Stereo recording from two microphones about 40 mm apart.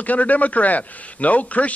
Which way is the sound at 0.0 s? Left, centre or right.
Left.